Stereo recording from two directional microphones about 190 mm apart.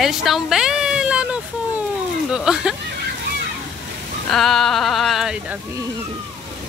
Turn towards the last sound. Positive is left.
turn(degrees=0)  # may be behind; listen again after turning